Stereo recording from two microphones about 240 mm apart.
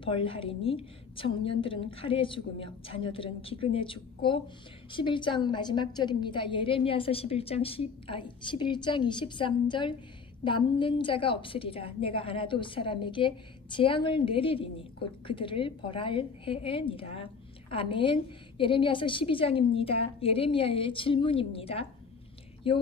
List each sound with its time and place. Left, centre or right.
0.0 s a woman's voice: left